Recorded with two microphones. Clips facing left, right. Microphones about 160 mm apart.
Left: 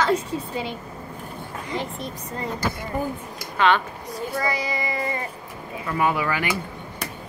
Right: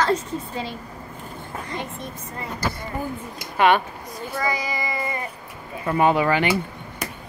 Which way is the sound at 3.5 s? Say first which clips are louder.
Right 2 dB; 15° right (ahead or behind).